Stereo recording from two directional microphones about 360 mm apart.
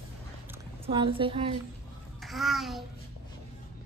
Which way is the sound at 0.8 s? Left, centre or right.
Centre.